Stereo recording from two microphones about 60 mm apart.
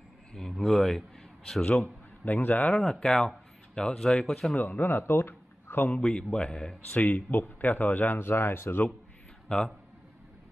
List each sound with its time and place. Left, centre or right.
0.3 s a sound: centre
0.7 s a man's voice: centre
2.2 s a man's voice: left
2.7 s speech: centre
4.6 s speech: left
5.9 s a man's voice: centre
6.9 s speech: left
9.5 s a man's voice: centre